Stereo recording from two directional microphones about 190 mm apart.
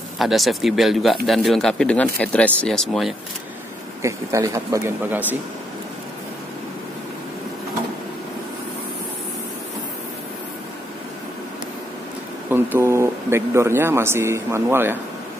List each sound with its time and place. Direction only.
0.2 s speech: centre (ahead or behind)
4.0 s speech: 15° right (ahead or behind)
12.4 s speech: 10° right (ahead or behind)